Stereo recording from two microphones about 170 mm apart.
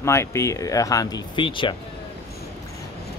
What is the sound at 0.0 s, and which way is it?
Speech, 15° left (ahead or behind).